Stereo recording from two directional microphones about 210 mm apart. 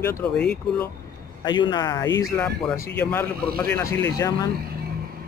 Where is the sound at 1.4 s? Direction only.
20° left (ahead or behind).